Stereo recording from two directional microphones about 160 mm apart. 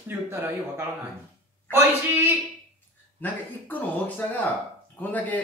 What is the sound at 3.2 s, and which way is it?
A man's voice, 10° left (ahead or behind).